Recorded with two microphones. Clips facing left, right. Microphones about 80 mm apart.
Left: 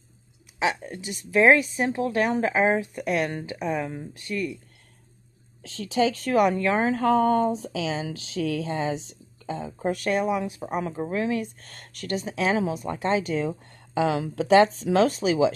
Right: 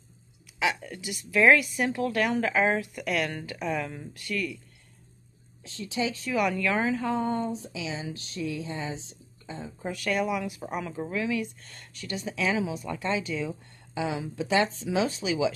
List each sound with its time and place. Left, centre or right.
0.6 s speech: left
5.6 s speech: left
6.4 s speech: left
7.0 s speech: left
9.9 s a woman's voice: left
12.2 s a woman's voice: left
14.0 s speech: left